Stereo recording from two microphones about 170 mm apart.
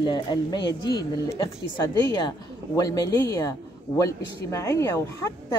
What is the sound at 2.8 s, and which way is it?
A woman's voice, 20° left (ahead or behind).